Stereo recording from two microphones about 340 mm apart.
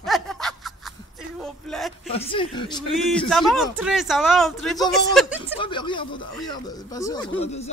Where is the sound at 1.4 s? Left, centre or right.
Centre.